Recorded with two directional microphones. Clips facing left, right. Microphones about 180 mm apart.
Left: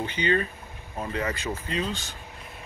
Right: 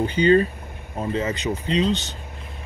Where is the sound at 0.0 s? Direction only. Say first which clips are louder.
Right 9 dB; 35° right (ahead or behind).